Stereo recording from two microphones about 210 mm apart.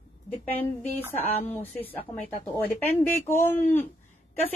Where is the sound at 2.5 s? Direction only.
10° left (ahead or behind).